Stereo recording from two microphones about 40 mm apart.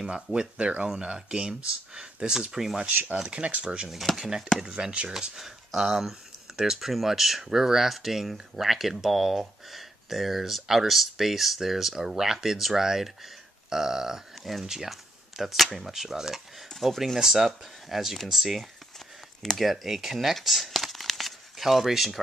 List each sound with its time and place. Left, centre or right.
0.0 s speech: centre
2.9 s speech: right
3.3 s speech: right
4.2 s speech: centre